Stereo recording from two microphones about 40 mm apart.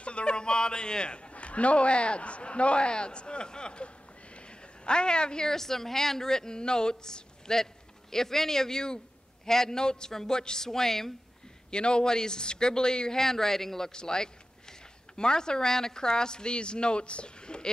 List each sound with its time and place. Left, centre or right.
0.0 s a man's voice: left; by 11.1 s centre
11.7 s a man's voice: left